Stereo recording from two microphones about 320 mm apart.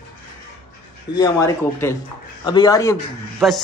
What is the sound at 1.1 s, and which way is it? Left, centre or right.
Speech, centre.